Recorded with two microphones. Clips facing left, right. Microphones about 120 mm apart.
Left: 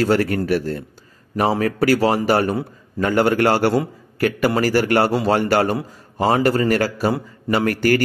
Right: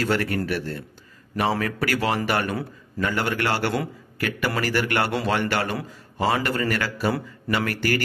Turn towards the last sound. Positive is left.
turn(degrees=45)  # may be behind; listen again after turning